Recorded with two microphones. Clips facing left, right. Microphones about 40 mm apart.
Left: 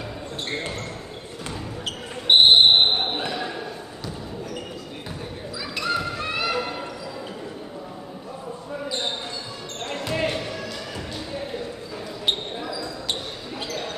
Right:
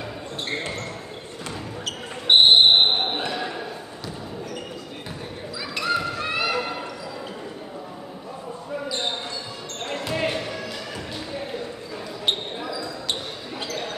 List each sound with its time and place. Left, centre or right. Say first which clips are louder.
2.2 s basketball bounce: even; centre
5.6 s a sound: right 1 dB; centre
9.8 s basketball bounce: even; centre
12.3 s basketball bounce: even; centre